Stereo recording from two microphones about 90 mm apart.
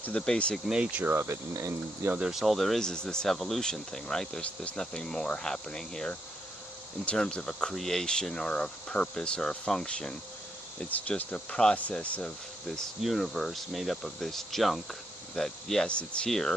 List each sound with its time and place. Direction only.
0.0 s speech: 10° left (ahead or behind)
0.7 s speech: 15° right (ahead or behind)
1.1 s speech: 30° right (ahead or behind)
2.1 s speech: 5° right (ahead or behind); by 12.3 s 15° left (ahead or behind)
12.7 s speech: centre (ahead or behind)